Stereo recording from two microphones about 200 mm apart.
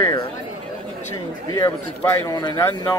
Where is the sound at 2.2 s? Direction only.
20° left (ahead or behind).